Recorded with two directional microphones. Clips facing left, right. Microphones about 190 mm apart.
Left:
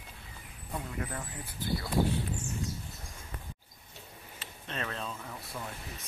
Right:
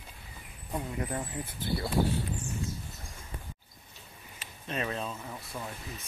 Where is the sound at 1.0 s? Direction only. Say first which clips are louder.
Right 5 dB; 25° right (ahead or behind).